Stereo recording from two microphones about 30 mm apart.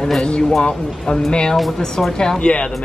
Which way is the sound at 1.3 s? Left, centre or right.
Left.